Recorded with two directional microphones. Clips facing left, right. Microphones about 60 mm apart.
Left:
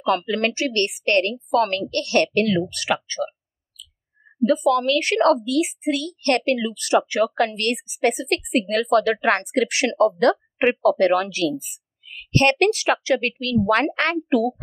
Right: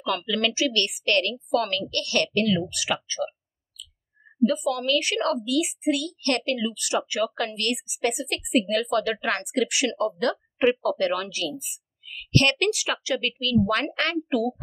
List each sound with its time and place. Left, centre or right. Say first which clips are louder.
0.0 s a woman's voice: left 5 dB; left
2.3 s speech: left 3 dB; left
4.4 s a woman's voice: left 5 dB; left
12.5 s a woman's voice: left 6 dB; left